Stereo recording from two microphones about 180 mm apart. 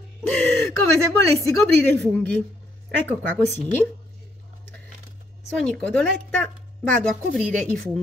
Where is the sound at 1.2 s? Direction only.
15° left (ahead or behind).